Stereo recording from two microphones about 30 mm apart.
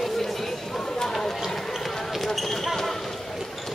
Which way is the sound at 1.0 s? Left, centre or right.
Centre.